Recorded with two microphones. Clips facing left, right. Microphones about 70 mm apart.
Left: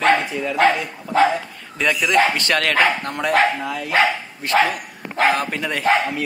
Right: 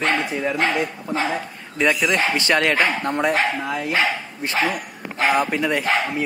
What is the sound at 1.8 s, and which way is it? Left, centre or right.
A man's voice, centre.